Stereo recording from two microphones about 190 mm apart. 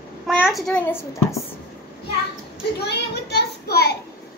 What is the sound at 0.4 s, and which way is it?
A child's voice, centre (ahead or behind).